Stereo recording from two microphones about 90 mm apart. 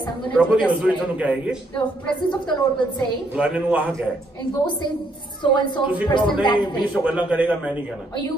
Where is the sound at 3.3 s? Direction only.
10° right (ahead or behind).